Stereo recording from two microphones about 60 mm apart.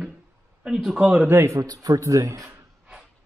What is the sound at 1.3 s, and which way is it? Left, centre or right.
Speech, right.